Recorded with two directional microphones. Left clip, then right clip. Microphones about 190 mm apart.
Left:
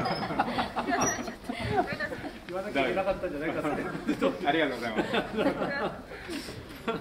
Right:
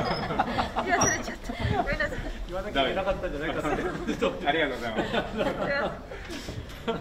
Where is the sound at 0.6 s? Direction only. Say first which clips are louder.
Right 3 dB; 20° left (ahead or behind).